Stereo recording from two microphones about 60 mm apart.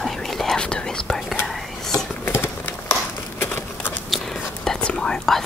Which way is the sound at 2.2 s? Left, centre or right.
Left.